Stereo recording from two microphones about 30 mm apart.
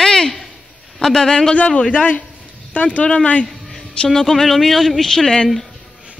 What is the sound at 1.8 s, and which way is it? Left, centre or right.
Speech, left.